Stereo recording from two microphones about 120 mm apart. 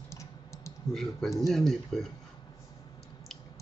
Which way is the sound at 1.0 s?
5° left (ahead or behind).